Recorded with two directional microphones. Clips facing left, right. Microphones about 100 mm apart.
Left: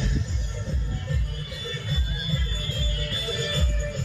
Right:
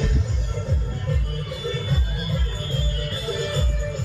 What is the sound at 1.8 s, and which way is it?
Music, 65° right (ahead or behind).